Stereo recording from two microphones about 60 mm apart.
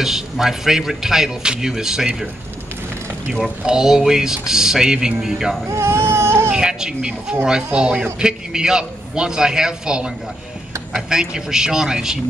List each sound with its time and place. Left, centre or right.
0.0 s a man's voice: centre
3.4 s a man's voice: centre
5.7 s baby cry: right
6.5 s a man's voice: centre